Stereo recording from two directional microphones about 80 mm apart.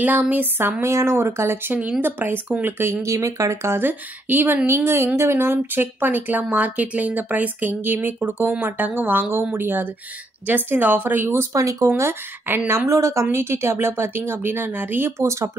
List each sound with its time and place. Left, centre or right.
0.0 s a woman's voice: centre
2.8 s a woman's voice: right
11.5 s speech: right
12.0 s a woman's voice: right